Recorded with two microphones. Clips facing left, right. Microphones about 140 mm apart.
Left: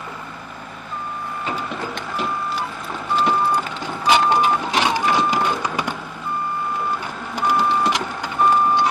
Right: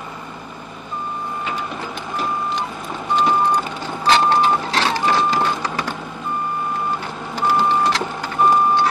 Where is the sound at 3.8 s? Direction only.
10° left (ahead or behind).